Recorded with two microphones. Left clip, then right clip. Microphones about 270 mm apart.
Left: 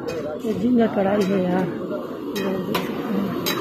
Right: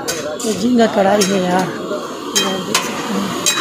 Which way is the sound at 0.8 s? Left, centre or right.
Right.